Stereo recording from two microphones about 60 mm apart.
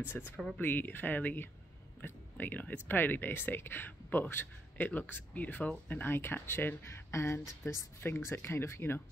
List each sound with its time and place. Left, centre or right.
0.2 s speech: centre
0.6 s speech: left